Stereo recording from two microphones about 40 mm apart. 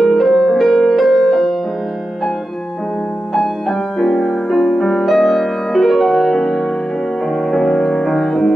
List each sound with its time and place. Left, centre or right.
0.0 s music: centre
4.0 s music: centre
7.5 s music: centre